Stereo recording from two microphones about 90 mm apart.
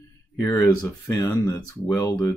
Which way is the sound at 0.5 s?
45° left (ahead or behind).